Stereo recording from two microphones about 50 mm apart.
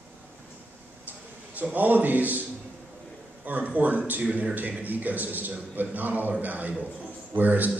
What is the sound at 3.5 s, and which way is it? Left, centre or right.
A man's voice, right.